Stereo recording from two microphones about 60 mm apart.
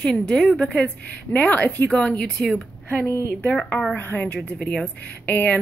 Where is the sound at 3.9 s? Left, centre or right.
Left.